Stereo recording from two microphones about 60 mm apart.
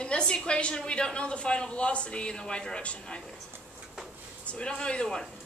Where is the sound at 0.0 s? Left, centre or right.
Centre.